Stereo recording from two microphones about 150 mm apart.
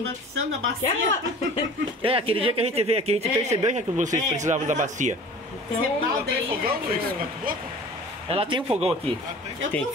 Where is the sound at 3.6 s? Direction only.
55° right (ahead or behind).